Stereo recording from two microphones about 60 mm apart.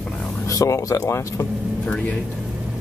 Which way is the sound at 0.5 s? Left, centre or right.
Left.